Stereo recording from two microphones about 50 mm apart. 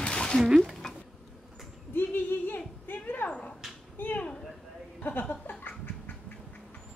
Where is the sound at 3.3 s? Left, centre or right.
Left.